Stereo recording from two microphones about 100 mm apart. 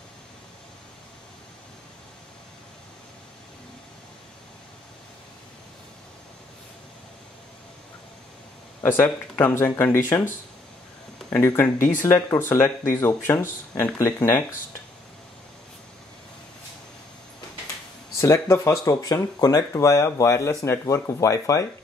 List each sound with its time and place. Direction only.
8.8 s speech: 20° left (ahead or behind)
11.3 s speech: 30° left (ahead or behind)
18.1 s speech: 30° left (ahead or behind)